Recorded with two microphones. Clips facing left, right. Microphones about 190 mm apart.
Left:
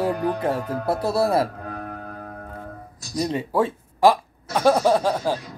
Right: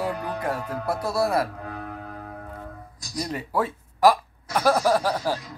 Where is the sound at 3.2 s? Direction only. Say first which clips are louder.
Left 5 dB; 25° left (ahead or behind).